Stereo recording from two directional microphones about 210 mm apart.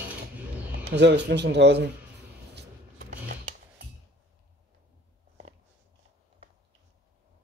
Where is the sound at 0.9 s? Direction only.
55° right (ahead or behind).